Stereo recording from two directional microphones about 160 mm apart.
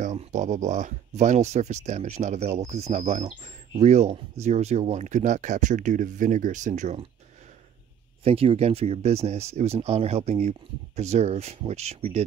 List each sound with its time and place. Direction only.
0.0 s speech: 50° right (ahead or behind)
8.2 s speech: 35° right (ahead or behind)